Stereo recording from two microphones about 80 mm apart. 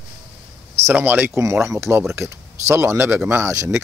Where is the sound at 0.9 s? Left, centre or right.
Right.